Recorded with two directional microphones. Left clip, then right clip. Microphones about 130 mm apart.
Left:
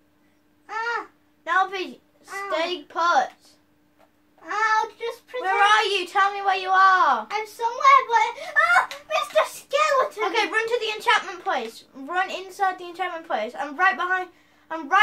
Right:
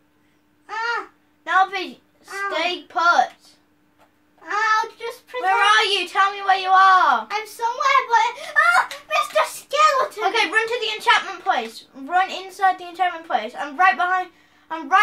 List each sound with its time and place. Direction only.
1.4 s a sound: 20° right (ahead or behind)
2.5 s a woman's voice: 25° right (ahead or behind)
4.4 s child singing: 45° right (ahead or behind)
5.4 s a child's voice: 20° right (ahead or behind)
7.2 s a sound: 45° right (ahead or behind)
10.3 s a woman's voice: 20° right (ahead or behind)